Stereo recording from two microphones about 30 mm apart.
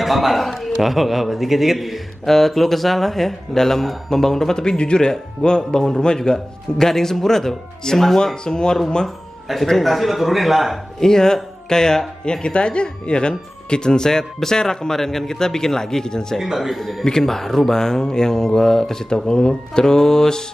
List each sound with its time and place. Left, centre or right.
0.0 s a man's voice: centre
2.2 s speech: centre
8.5 s speech: left
9.8 s a man's voice: centre
11.0 s speech: centre
16.5 s a man's voice: centre
17.2 s speech: centre
19.1 s speech: left